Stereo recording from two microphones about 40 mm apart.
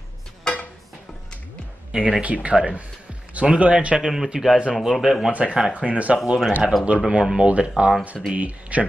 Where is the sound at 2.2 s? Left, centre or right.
Right.